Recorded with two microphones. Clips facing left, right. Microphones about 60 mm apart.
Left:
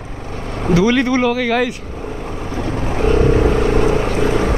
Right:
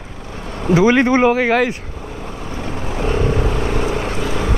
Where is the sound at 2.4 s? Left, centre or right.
Left.